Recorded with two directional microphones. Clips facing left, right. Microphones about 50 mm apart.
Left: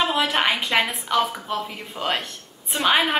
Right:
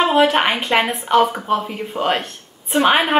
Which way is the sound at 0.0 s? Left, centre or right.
Right.